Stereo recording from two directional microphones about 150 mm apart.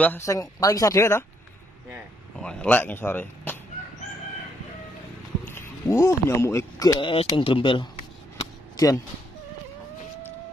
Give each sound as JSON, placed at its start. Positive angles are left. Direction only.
{"t": 0.0, "sound": "speech", "side_deg": 15}
{"t": 2.4, "sound": "speech", "side_deg": 10}
{"t": 5.4, "sound": "speech", "side_deg": 15}
{"t": 7.0, "sound": "speech", "side_deg": 35}
{"t": 8.7, "sound": "speech", "side_deg": 25}